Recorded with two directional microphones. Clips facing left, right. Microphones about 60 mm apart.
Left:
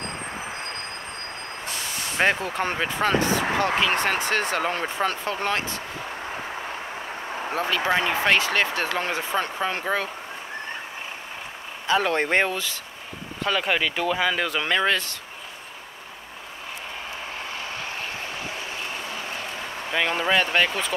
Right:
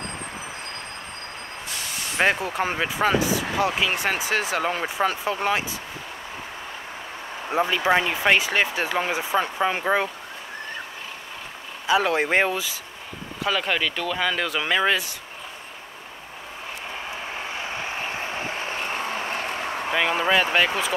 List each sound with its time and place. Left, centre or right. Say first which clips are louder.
2.1 s speech: right 1 dB; centre
7.5 s speech: right 3 dB; centre
11.8 s speech: right 1 dB; centre
17.7 s vehicle: right 3 dB; right
19.9 s speech: right 1 dB; centre